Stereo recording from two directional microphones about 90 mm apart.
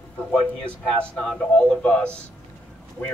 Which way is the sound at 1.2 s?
5° left (ahead or behind).